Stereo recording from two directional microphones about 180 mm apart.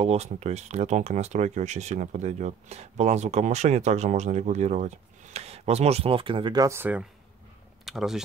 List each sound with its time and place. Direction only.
0.0 s speech: 35° right (ahead or behind); by 8.2 s centre (ahead or behind)